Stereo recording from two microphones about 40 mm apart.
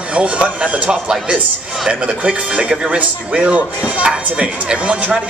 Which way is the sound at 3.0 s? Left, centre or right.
Right.